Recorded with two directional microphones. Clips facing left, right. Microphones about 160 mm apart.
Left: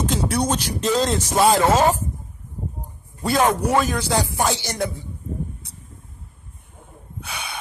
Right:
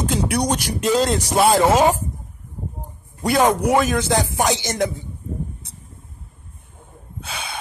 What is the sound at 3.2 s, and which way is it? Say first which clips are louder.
Speech: right 2 dB; 15° right (ahead or behind).